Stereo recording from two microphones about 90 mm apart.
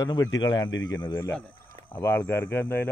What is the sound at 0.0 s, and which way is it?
A man's voice, 45° left (ahead or behind).